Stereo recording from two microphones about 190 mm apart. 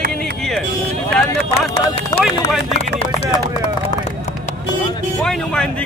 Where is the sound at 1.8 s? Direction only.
30° left (ahead or behind).